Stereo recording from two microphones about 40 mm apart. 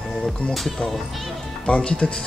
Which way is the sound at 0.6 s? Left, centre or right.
Centre.